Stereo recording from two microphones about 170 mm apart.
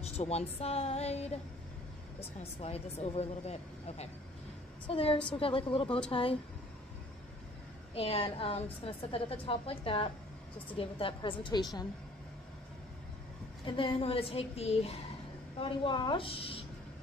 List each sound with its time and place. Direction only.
0.0 s a woman's voice: 40° left (ahead or behind)
7.9 s a woman's voice: 35° left (ahead or behind)
13.7 s speech: 30° left (ahead or behind)